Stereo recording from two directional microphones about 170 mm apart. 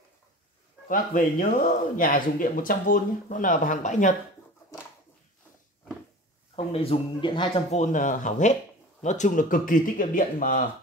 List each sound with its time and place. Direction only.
0.8 s speech: 55° left (ahead or behind)
6.5 s speech: 35° left (ahead or behind)
7.7 s speech: 50° left (ahead or behind)